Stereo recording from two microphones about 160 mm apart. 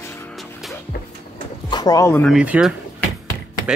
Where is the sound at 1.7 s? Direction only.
25° left (ahead or behind).